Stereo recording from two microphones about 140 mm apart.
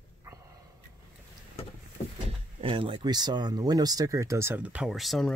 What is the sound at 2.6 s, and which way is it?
Speech, 35° right (ahead or behind).